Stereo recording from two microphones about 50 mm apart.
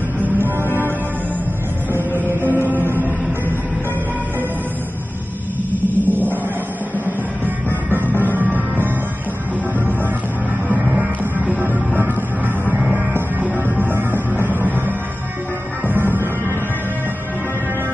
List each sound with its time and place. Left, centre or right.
2.4 s music: right
5.7 s music: right
11.0 s music: right
13.1 s music: right